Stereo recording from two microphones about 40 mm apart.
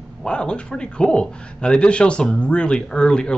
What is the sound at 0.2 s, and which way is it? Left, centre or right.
Speech, left.